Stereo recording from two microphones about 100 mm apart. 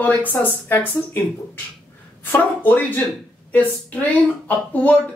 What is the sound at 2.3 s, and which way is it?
Speech, 20° left (ahead or behind).